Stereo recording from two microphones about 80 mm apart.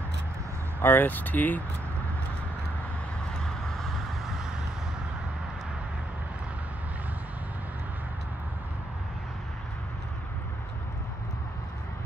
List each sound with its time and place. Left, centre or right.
0.8 s speech: left